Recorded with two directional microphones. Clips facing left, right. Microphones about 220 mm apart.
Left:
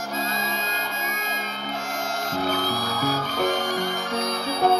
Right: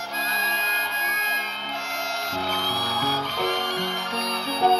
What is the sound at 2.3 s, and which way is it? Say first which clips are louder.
Music: left 5 dB; 45° left (ahead or behind).